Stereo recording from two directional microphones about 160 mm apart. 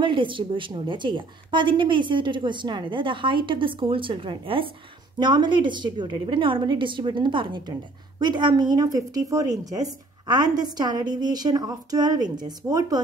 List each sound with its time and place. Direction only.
0.0 s a woman's voice: 30° right (ahead or behind)